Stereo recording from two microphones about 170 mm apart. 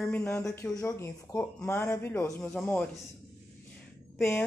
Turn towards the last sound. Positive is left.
turn(degrees=15)  # may be behind; listen again after turning